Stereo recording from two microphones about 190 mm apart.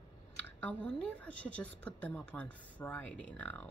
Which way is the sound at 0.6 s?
5° left (ahead or behind).